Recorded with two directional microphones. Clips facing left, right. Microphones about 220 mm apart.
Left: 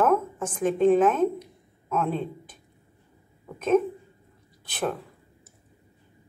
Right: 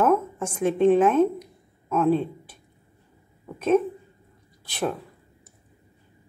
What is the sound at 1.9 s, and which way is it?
Speech, 5° right (ahead or behind).